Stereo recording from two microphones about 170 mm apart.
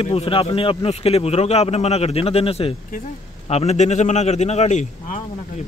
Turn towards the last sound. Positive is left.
turn(degrees=40)  # may be behind; listen again after turning